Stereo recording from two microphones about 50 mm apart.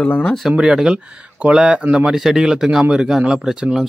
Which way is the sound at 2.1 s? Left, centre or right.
Centre.